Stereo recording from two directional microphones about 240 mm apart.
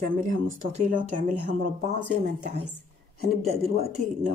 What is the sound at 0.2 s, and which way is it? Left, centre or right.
Speech, right.